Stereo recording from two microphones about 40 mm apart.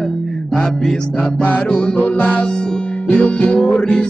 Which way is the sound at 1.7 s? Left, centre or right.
Left.